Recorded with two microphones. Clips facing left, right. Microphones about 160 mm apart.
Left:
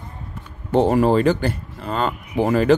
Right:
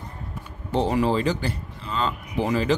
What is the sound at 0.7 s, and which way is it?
Speech, 50° left (ahead or behind).